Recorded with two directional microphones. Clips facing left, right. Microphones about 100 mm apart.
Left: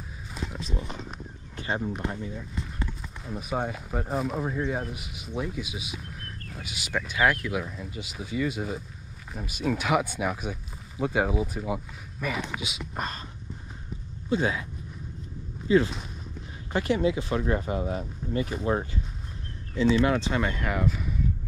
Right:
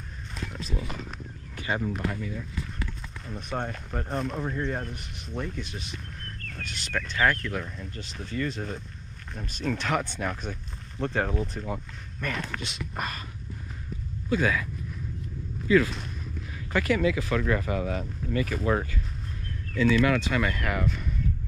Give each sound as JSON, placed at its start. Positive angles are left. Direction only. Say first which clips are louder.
{"t": 0.3, "sound": "a sound", "louder": "left 1 dB", "side_deg": 5}
{"t": 1.6, "sound": "speech", "louder": "right 1 dB", "side_deg": 25}
{"t": 3.3, "sound": "speech", "louder": "left 3 dB", "side_deg": 5}
{"t": 14.3, "sound": "speech", "louder": "right 1 dB", "side_deg": 25}
{"t": 15.7, "sound": "speech", "louder": "even", "side_deg": 25}
{"t": 19.7, "sound": "speech", "louder": "even", "side_deg": 25}
{"t": 20.6, "sound": "speech", "louder": "left 1 dB", "side_deg": 0}